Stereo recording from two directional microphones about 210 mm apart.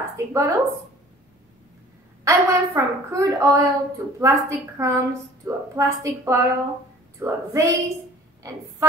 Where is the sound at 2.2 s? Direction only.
15° right (ahead or behind).